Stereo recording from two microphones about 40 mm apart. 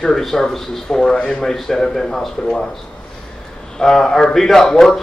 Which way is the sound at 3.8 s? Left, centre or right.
Centre.